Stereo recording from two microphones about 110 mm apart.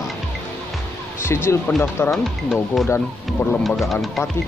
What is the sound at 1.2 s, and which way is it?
Speech, 25° left (ahead or behind).